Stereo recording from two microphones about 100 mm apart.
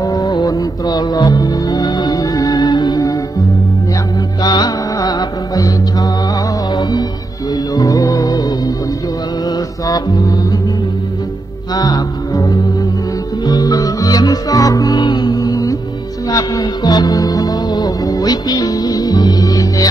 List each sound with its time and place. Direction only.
0.0 s music: 35° left (ahead or behind)
4.4 s music: 40° left (ahead or behind)
9.8 s music: 40° left (ahead or behind)
11.7 s music: 40° left (ahead or behind)